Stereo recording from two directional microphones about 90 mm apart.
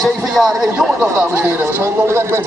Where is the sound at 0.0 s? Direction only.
Centre (ahead or behind).